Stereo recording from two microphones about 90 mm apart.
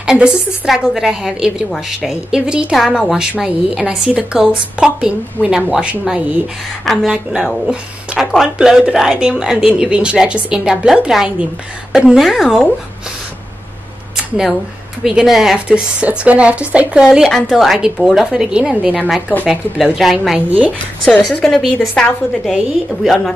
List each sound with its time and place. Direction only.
0.0 s a woman's voice: 10° right (ahead or behind)
14.1 s a sound: 5° right (ahead or behind)
15.0 s speech: 5° right (ahead or behind)
17.3 s a woman's voice: 5° left (ahead or behind)
20.3 s speech: 15° right (ahead or behind)
21.3 s a woman's voice: 10° left (ahead or behind)